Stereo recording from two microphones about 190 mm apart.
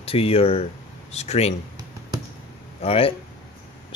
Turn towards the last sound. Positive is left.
turn(degrees=30)  # may be behind; listen again after turning